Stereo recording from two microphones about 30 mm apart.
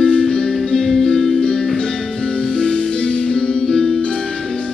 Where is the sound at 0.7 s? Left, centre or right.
Centre.